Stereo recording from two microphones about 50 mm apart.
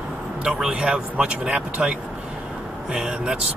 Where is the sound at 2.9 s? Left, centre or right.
Centre.